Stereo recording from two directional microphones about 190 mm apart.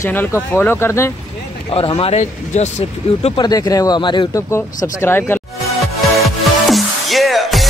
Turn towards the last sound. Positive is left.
turn(degrees=0)  # may be behind; listen again after turning